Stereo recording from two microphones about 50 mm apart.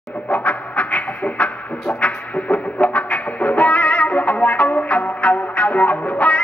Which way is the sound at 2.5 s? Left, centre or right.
Left.